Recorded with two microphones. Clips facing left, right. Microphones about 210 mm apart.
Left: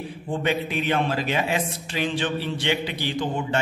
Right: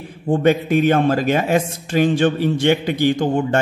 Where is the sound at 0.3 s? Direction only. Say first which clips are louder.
Right 10 dB; 45° right (ahead or behind).